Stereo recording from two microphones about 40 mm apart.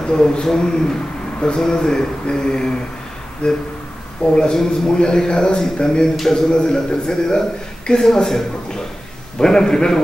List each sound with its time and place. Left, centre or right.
0.0 s a man's voice: centre
3.4 s a sound: left
4.4 s a man's voice: centre
9.4 s a man's voice: centre